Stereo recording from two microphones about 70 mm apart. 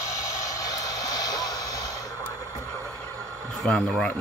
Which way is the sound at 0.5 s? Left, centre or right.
Left.